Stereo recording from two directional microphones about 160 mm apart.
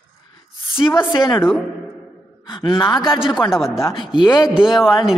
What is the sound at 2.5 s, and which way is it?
Speech, 30° left (ahead or behind).